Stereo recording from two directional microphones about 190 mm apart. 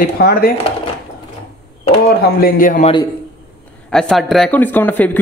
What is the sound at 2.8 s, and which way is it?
Speech, 25° left (ahead or behind).